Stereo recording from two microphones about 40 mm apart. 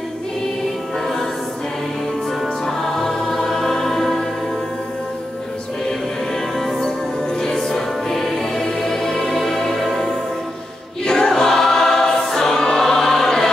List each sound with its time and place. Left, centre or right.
2.6 s music: centre
7.4 s music: centre
11.1 s choir: centre